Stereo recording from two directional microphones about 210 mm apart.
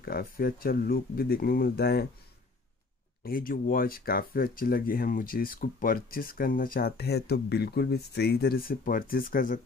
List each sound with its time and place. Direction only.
0.0 s speech: 45° left (ahead or behind)
3.3 s speech: 40° left (ahead or behind)